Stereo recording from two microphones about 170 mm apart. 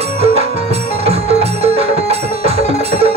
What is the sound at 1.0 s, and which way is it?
Music, 35° right (ahead or behind).